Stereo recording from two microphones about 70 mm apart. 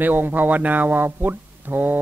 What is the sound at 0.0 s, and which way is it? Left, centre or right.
Speech, right.